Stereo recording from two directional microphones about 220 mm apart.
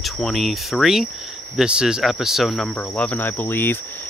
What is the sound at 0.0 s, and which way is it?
Speech, centre (ahead or behind).